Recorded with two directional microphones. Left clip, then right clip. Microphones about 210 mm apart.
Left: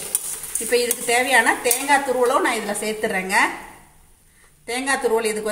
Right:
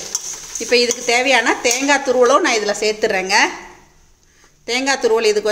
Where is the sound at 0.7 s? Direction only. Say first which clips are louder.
Right 5 dB; 35° right (ahead or behind).